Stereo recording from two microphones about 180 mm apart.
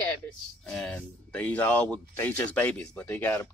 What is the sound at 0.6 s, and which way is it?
Speech, 5° left (ahead or behind).